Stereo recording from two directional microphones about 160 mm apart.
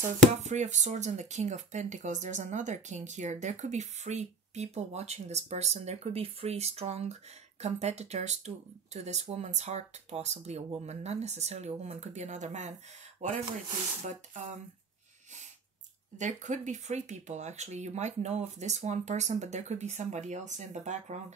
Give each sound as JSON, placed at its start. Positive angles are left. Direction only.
{"t": 0.3, "sound": "speech", "side_deg": -45}
{"t": 16.2, "sound": "speech", "side_deg": -50}